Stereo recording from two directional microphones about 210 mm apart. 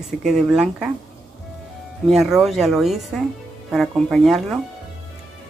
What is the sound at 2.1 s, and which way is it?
Speech, centre (ahead or behind).